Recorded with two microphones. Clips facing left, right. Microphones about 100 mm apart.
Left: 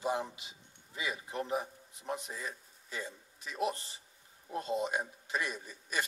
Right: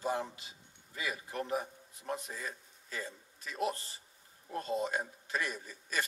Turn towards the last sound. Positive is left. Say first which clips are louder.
# even
turn(degrees=15)  # may be behind; listen again after turning